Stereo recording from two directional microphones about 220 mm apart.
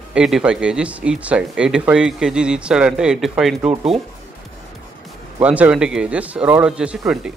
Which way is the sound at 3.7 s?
25° right (ahead or behind).